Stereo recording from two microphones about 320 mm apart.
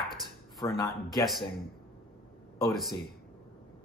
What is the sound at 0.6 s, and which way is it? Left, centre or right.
Speech, centre.